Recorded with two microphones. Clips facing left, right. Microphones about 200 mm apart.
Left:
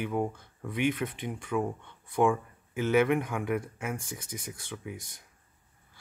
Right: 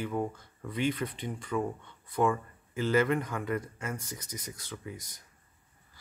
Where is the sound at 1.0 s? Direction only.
5° left (ahead or behind).